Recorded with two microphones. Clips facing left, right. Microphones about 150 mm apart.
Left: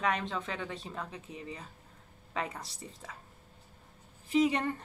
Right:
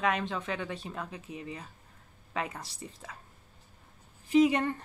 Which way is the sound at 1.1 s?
30° left (ahead or behind).